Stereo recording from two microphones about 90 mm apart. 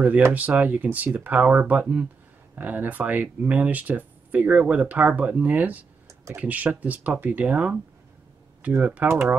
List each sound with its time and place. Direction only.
0.3 s speech: 15° right (ahead or behind)